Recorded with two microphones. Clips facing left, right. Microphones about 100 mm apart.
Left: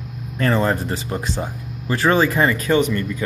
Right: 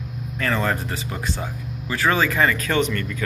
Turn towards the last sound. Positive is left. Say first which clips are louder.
# left 4 dB
turn(degrees=20)  # may be behind; listen again after turning